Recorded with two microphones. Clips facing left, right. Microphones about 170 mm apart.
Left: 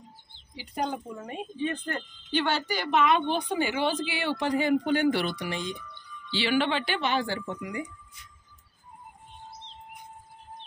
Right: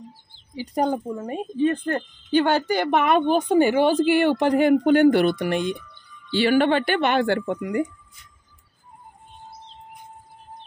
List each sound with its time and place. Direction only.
0.6 s speech: 45° right (ahead or behind)
1.3 s a woman's voice: 45° right (ahead or behind)